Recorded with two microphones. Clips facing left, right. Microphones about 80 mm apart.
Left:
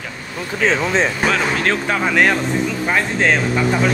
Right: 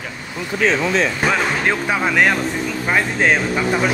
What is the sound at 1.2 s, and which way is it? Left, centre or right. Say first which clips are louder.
Speech: even; centre.